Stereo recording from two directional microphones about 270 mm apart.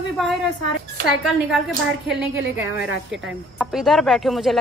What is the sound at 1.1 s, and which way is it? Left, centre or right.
A woman's voice, centre.